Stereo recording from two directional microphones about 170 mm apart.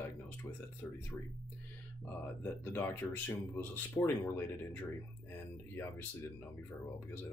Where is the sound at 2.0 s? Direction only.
10° left (ahead or behind).